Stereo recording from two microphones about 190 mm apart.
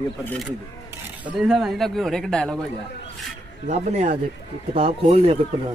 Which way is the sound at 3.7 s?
35° right (ahead or behind).